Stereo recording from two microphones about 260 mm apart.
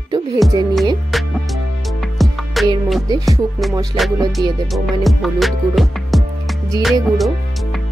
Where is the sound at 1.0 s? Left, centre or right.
Centre.